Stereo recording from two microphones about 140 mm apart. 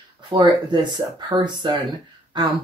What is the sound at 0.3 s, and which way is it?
Speech, 35° right (ahead or behind).